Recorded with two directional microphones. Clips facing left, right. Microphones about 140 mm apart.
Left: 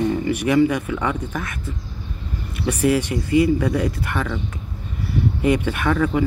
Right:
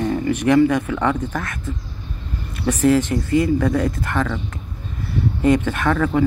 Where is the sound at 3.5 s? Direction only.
50° right (ahead or behind).